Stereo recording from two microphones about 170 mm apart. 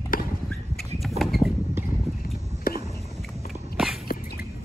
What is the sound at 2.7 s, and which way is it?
Biting, 60° left (ahead or behind).